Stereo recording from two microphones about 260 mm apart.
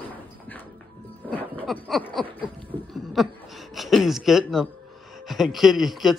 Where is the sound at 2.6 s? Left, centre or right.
Centre.